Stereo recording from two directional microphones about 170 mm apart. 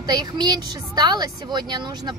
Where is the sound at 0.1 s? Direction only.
25° right (ahead or behind).